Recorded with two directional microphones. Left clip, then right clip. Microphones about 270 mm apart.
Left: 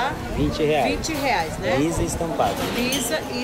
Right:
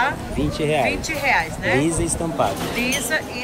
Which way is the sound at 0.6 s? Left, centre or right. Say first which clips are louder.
Even; right.